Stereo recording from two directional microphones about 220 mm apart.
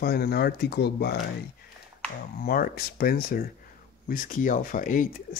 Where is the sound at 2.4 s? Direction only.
40° left (ahead or behind).